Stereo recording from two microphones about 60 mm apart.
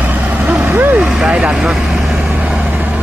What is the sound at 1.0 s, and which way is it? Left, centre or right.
Vehicle, centre.